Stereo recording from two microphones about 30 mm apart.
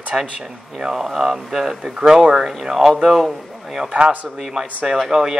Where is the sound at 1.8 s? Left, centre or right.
Right.